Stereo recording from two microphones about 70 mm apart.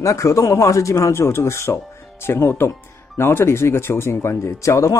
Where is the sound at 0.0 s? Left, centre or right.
Left.